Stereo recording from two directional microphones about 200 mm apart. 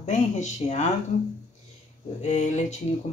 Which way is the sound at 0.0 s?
35° left (ahead or behind).